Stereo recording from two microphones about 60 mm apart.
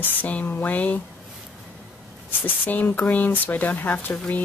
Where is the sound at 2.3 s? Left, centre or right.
Left.